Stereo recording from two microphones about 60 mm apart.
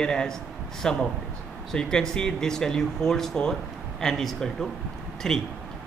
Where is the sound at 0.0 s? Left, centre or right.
Centre.